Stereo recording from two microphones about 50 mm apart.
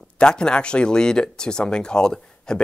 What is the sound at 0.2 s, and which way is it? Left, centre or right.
Speech, centre.